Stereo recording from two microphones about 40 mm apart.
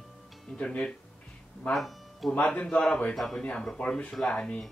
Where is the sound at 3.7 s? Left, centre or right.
Left.